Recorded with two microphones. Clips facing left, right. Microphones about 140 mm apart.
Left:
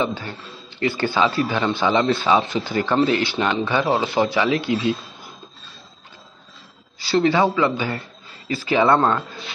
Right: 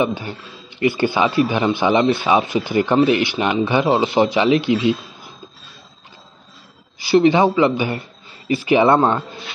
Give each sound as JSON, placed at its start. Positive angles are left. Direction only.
{"t": 0.0, "sound": "a man's voice", "side_deg": -15}
{"t": 7.0, "sound": "a man's voice", "side_deg": -20}